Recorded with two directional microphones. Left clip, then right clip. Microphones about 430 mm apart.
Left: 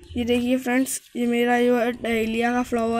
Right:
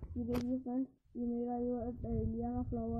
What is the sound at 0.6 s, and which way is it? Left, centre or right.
Speech, left.